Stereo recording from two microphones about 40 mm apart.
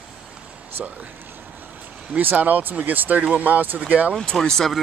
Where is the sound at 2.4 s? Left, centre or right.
Right.